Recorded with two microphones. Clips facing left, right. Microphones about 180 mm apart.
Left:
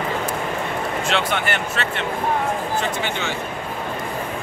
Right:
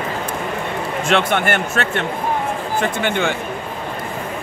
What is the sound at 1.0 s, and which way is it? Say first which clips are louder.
Speech: right 7 dB; 50° right (ahead or behind).